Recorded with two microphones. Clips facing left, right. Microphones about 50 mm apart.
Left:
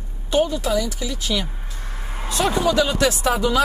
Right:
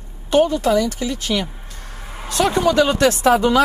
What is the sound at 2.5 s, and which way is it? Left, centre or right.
Speech, right.